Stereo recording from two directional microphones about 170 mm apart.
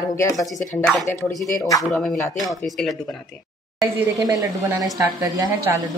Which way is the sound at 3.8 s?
20° right (ahead or behind).